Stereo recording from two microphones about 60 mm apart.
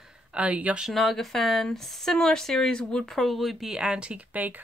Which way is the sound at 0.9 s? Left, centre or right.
Centre.